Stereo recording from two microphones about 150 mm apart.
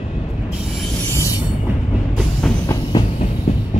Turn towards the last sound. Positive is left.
turn(degrees=25)  # may be behind; listen again after turning